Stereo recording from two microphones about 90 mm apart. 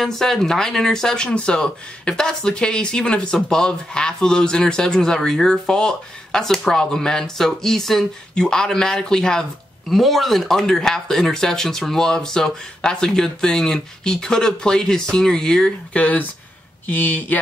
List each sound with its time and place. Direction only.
0.0 s speech: 5° left (ahead or behind)